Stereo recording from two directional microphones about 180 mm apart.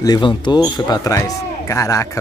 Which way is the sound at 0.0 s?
25° left (ahead or behind).